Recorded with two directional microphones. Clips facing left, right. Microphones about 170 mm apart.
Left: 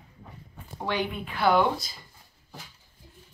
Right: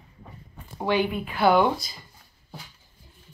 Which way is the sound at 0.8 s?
10° right (ahead or behind).